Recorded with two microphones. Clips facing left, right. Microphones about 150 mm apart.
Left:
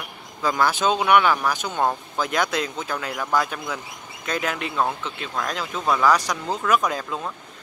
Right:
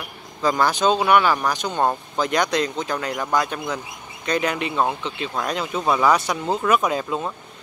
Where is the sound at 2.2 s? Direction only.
5° left (ahead or behind).